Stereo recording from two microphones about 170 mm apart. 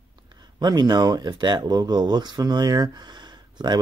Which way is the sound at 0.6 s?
25° right (ahead or behind).